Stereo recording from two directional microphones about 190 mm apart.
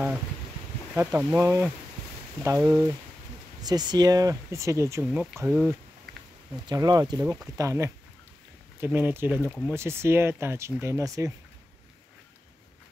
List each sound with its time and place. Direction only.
0.9 s speech: 10° right (ahead or behind)
5.0 s speech: 5° right (ahead or behind)
6.7 s speech: 20° right (ahead or behind)
9.4 s speech: centre (ahead or behind)
9.7 s speech: 15° right (ahead or behind)